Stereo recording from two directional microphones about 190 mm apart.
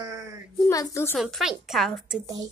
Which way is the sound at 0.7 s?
15° left (ahead or behind).